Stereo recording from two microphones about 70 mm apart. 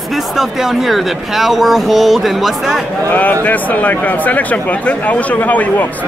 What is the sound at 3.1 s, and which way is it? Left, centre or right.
Speech, left.